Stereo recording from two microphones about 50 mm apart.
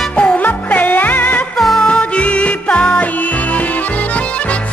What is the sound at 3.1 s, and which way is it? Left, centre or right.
Accordion, left.